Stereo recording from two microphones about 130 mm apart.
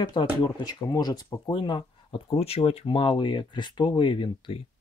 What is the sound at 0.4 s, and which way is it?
Speech, 35° left (ahead or behind).